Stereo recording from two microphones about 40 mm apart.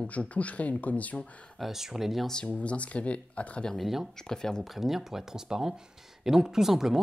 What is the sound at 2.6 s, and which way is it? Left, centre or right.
Speech, left.